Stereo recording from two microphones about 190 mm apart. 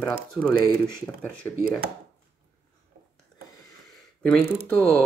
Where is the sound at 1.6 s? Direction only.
55° right (ahead or behind).